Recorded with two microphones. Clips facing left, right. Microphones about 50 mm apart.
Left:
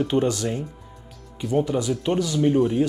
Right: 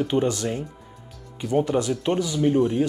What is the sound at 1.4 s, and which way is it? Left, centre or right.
Speech, centre.